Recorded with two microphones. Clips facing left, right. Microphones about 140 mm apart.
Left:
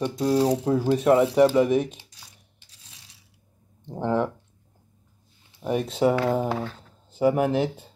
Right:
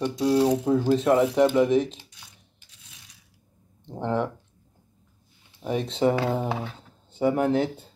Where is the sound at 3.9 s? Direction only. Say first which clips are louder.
Left 2 dB; 10° left (ahead or behind).